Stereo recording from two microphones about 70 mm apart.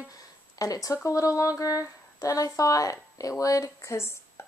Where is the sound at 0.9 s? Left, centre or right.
Left.